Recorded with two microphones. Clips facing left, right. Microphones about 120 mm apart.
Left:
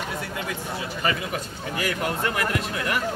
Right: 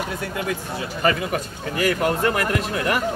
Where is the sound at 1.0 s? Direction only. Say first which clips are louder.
Right 6 dB; 50° right (ahead or behind).